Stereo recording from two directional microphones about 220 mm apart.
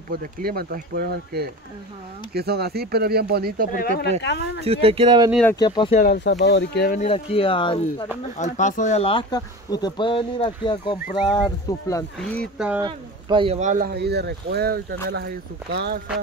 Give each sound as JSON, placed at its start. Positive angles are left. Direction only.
{"t": 0.1, "sound": "speech", "side_deg": -40}
{"t": 3.7, "sound": "speech", "side_deg": 45}
{"t": 4.2, "sound": "speech", "side_deg": 55}
{"t": 4.6, "sound": "speech", "side_deg": -25}
{"t": 5.3, "sound": "speech", "side_deg": 5}
{"t": 5.6, "sound": "speech", "side_deg": 20}
{"t": 5.9, "sound": "speech", "side_deg": 45}
{"t": 7.0, "sound": "speech", "side_deg": 25}
{"t": 8.4, "sound": "speech", "side_deg": 35}
{"t": 12.2, "sound": "speech", "side_deg": 5}
{"t": 12.8, "sound": "speech", "side_deg": -20}